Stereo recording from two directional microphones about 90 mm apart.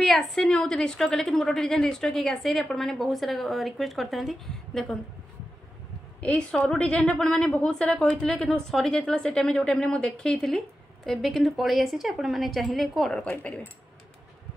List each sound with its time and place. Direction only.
0.0 s a woman's voice: centre (ahead or behind)
6.2 s a woman's voice: 10° left (ahead or behind)
13.3 s a woman's voice: 15° left (ahead or behind)